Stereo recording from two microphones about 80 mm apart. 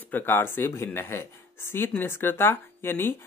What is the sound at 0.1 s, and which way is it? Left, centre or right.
Speech, left.